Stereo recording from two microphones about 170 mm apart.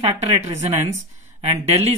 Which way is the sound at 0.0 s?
40° right (ahead or behind).